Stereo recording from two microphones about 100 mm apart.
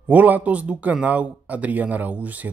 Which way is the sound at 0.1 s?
15° right (ahead or behind).